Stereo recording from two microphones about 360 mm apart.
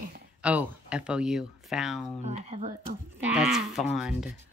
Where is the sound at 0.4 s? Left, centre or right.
Centre.